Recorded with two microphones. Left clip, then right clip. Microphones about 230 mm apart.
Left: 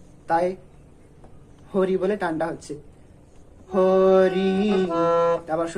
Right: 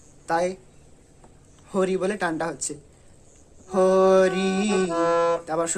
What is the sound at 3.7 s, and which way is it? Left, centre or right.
Speech, right.